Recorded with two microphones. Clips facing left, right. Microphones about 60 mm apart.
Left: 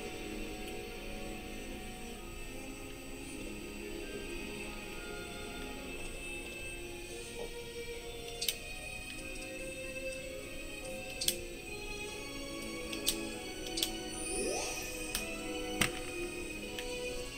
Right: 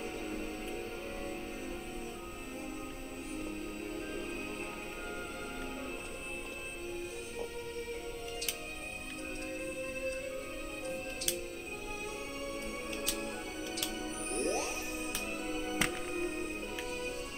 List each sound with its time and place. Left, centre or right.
13.2 s music: right